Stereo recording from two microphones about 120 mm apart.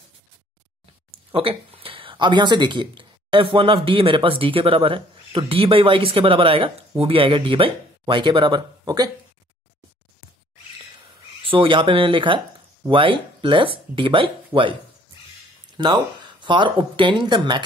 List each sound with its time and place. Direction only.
1.1 s speech: 55° right (ahead or behind); by 9.1 s 35° right (ahead or behind)
11.5 s speech: 45° right (ahead or behind)
15.8 s speech: 40° right (ahead or behind)